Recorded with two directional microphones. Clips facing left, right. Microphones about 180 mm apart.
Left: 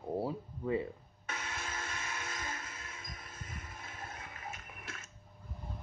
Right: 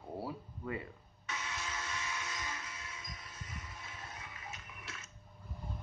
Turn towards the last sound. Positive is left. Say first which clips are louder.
# left 2 dB
turn(degrees=50)  # may be behind; listen again after turning